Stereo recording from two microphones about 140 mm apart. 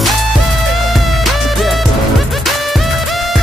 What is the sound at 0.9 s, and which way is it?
Music, centre (ahead or behind).